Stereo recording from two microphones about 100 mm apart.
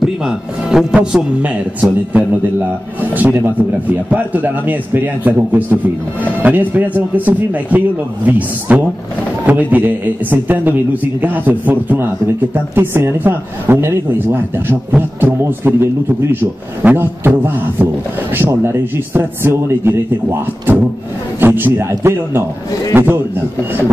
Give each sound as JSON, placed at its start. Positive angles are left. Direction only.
{"t": 0.0, "sound": "a man's voice", "side_deg": -5}